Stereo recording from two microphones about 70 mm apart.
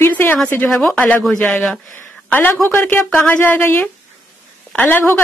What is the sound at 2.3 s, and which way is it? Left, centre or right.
Speech, left.